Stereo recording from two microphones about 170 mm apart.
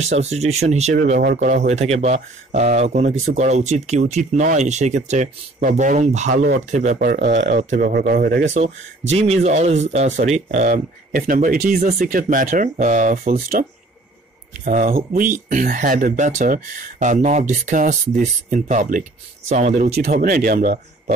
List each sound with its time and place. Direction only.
0.0 s speech: 40° right (ahead or behind)
1.2 s speech: 50° right (ahead or behind)
1.7 s speech: 40° right (ahead or behind); by 8.5 s 80° right
9.1 s speech: 40° right (ahead or behind)
20.1 s speech: 60° right (ahead or behind)